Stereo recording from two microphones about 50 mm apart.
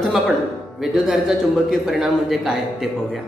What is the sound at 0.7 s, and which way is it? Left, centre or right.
A man's voice, centre.